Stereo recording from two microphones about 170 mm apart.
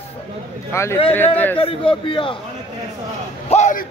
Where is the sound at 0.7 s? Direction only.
15° left (ahead or behind).